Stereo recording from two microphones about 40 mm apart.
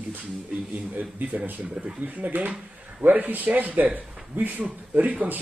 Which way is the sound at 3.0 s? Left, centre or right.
Right.